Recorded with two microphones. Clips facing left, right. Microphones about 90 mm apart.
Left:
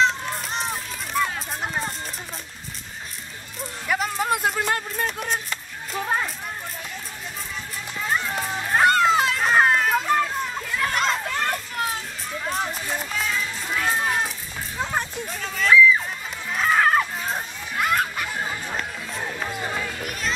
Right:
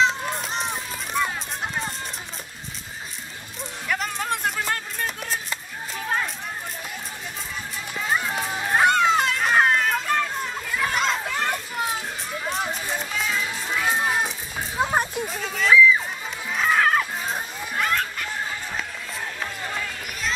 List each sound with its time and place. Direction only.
0.0 s children playing: centre (ahead or behind)
3.8 s music: 5° left (ahead or behind)
8.0 s children playing: 5° right (ahead or behind)
10.0 s chatter: 5° left (ahead or behind)
14.8 s a sound: 15° right (ahead or behind)
15.2 s children playing: centre (ahead or behind)
17.9 s a sound: 15° left (ahead or behind)
19.2 s music: 10° left (ahead or behind)
20.0 s run: centre (ahead or behind)